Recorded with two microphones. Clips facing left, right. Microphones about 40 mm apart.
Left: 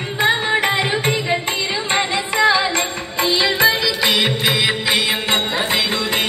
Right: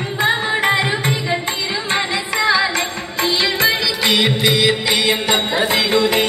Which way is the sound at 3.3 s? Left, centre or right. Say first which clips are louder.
Left 2 dB; centre.